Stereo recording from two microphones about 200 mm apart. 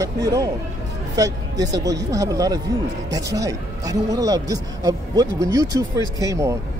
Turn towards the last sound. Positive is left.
turn(degrees=-15)  # may be behind; listen again after turning